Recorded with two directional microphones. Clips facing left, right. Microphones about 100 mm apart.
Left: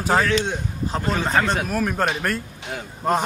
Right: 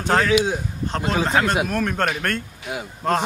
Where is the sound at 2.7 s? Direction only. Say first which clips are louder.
Right 2 dB; 10° right (ahead or behind).